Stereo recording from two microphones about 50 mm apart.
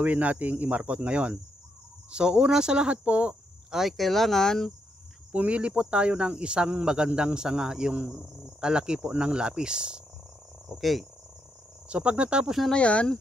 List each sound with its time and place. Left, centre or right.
0.0 s speech: right
3.7 s speech: centre
5.3 s speech: right
10.7 s speech: centre
11.9 s speech: right
12.7 s speech: left